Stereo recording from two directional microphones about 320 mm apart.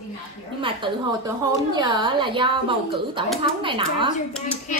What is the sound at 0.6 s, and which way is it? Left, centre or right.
A woman's voice, centre.